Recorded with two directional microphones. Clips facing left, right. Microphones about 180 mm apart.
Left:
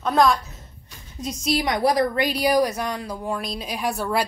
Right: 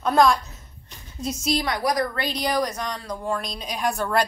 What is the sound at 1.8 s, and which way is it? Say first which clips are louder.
Speech: left 4 dB; 25° left (ahead or behind).